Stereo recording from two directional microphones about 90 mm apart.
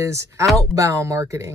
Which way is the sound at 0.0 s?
35° right (ahead or behind).